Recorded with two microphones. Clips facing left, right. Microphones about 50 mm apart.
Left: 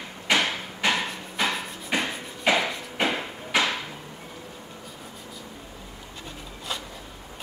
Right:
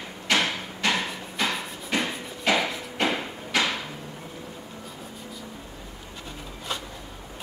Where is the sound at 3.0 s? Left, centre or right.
Centre.